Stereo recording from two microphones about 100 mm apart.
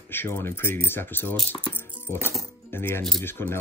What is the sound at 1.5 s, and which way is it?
Music, 20° left (ahead or behind).